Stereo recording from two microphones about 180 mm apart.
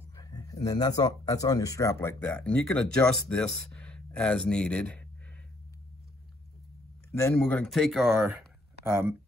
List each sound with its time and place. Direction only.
0.1 s speech: 20° left (ahead or behind)
7.1 s speech: 15° left (ahead or behind)
8.8 s speech: 10° right (ahead or behind)